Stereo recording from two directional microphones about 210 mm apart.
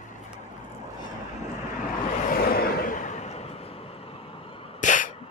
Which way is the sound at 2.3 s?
45° left (ahead or behind).